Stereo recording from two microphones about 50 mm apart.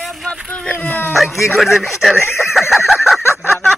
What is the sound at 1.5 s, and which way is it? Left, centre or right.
Speech, centre.